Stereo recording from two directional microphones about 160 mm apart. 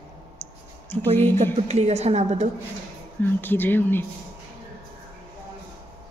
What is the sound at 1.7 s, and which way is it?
Speech, 45° right (ahead or behind).